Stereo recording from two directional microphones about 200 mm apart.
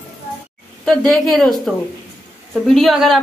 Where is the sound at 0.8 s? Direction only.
Centre (ahead or behind).